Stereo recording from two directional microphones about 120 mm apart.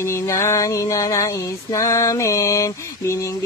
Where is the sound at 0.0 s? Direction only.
25° left (ahead or behind).